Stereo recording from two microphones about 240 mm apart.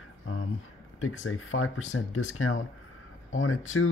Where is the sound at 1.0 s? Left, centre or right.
Left.